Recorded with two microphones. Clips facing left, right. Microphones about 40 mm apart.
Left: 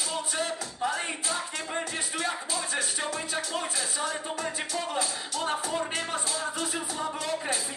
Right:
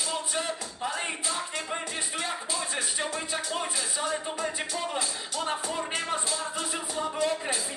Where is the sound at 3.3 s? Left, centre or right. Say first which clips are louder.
Even; centre.